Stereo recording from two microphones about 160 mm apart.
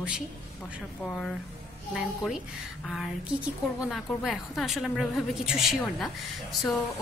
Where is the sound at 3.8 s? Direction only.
Centre (ahead or behind).